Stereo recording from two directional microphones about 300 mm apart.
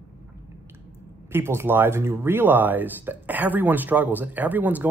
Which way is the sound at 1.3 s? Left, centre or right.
Centre.